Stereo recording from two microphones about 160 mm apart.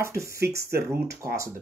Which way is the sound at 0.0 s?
15° right (ahead or behind).